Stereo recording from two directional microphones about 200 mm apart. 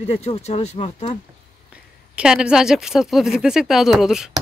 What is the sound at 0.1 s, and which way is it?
Speech, 30° left (ahead or behind).